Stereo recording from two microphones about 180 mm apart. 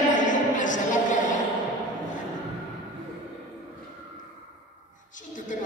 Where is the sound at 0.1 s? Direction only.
45° left (ahead or behind).